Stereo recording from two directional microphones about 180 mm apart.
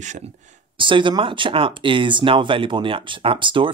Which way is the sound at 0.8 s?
25° right (ahead or behind).